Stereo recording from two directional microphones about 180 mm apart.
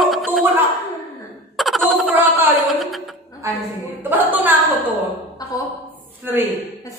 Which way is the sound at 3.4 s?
15° right (ahead or behind).